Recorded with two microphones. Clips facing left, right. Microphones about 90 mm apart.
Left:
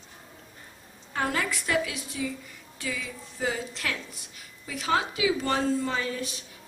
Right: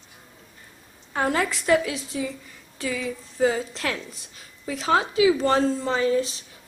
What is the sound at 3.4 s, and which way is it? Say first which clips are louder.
A woman's voice: right 7 dB; 35° right (ahead or behind).